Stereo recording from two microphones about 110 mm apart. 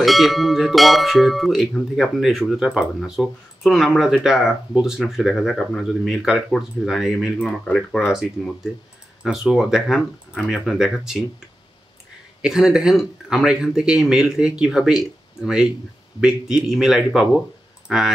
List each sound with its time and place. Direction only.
0.0 s speech: centre (ahead or behind)
12.4 s speech: 5° right (ahead or behind)